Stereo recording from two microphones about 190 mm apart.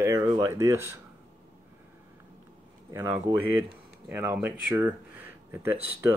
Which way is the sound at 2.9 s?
15° right (ahead or behind).